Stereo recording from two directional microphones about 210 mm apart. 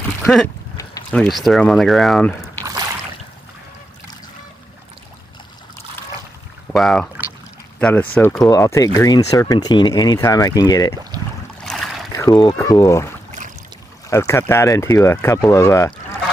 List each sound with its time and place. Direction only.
0.2 s speech: centre (ahead or behind)
6.7 s speech: centre (ahead or behind); by 11.0 s 15° left (ahead or behind)
11.6 s boat: centre (ahead or behind)
12.1 s speech: 20° left (ahead or behind)